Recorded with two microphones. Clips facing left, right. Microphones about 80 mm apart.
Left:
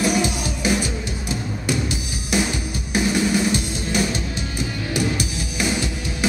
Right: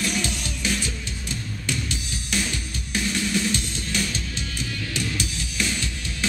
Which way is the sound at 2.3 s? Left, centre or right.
Centre.